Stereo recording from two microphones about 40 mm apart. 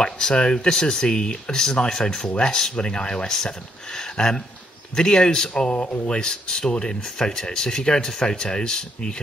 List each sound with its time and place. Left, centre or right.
0.0 s speech: left